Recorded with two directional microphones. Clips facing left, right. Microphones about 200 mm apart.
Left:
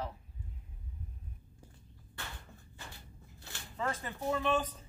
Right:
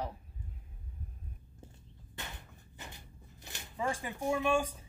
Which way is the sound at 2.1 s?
20° right (ahead or behind).